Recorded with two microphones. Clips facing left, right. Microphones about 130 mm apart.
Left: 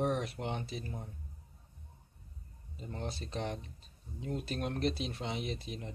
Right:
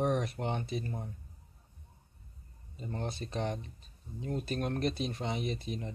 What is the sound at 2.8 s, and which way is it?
Speech, centre (ahead or behind).